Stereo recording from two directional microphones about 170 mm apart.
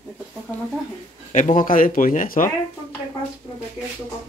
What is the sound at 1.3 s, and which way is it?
Speech, 50° left (ahead or behind).